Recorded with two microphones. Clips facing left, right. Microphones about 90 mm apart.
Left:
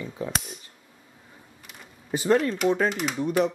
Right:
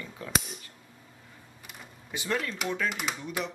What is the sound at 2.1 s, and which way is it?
Speech, 40° left (ahead or behind).